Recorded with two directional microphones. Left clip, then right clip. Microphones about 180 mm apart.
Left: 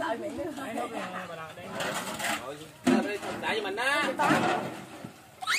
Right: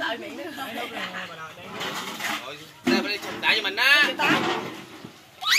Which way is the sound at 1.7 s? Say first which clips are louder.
Right 1 dB; 25° left (ahead or behind).